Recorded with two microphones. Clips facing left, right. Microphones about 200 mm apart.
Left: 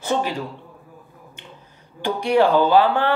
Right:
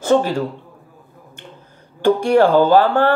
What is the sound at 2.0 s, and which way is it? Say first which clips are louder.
Speech: right 5 dB; 50° right (ahead or behind).